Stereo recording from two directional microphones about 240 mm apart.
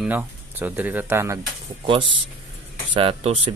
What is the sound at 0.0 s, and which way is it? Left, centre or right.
Speech, centre.